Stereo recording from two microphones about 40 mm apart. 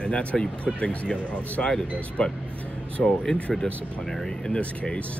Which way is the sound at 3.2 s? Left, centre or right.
Centre.